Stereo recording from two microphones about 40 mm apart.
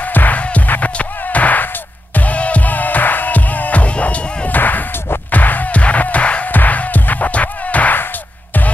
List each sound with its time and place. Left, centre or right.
0.0 s music: left
0.4 s music: left
4.6 s a sound: left
5.3 s music: left
6.5 s music: left